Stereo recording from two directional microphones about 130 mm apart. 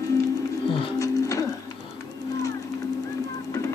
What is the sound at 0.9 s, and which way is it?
Music, 25° left (ahead or behind).